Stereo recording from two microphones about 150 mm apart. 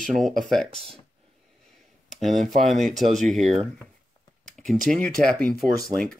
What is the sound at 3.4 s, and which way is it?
Speech, 45° right (ahead or behind).